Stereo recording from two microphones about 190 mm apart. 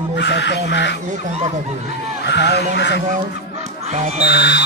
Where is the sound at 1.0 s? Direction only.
35° right (ahead or behind).